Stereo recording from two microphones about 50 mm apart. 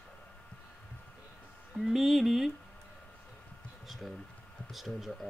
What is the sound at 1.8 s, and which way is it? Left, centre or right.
Speech, centre.